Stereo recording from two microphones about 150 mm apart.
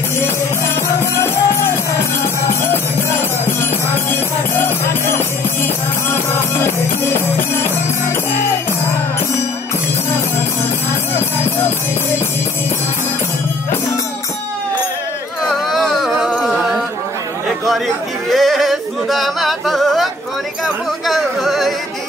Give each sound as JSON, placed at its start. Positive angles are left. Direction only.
{"t": 1.1, "sound": "music", "side_deg": 15}
{"t": 15.4, "sound": "a capella", "side_deg": 0}
{"t": 18.3, "sound": "yodeling", "side_deg": 0}